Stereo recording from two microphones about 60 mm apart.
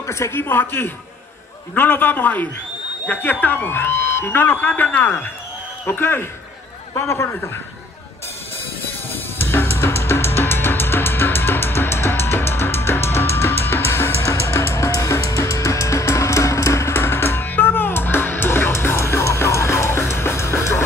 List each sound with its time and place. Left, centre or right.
0.0 s a man's voice: left
5.9 s speech: left
9.1 s drum kit: left
14.4 s music: left
14.9 s music: left